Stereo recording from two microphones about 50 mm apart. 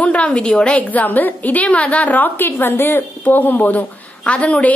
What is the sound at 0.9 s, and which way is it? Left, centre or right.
A woman's voice, left.